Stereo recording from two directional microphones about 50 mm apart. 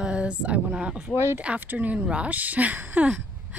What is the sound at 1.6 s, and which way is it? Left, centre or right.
Speech, right.